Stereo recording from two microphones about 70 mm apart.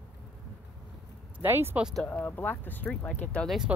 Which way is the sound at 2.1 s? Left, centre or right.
Left.